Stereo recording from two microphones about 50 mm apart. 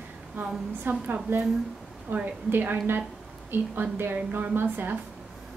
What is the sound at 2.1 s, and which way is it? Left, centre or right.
A woman's voice, right.